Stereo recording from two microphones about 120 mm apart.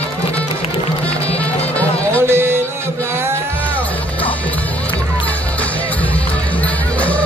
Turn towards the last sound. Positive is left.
turn(degrees=10)  # may be behind; listen again after turning